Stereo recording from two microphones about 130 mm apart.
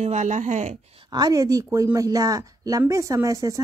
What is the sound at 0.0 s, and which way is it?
Speech, 65° right (ahead or behind).